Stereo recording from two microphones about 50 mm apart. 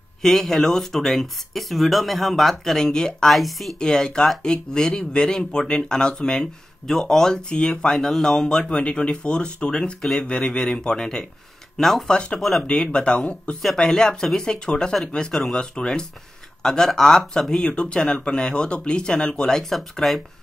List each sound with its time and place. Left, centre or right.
0.2 s speech: centre
3.3 s speech: centre
3.8 s speech: centre
8.6 s speech: left; by 11.9 s centre
12.1 s speech: centre
12.4 s speech: centre
12.6 s speech: left
13.6 s speech: centre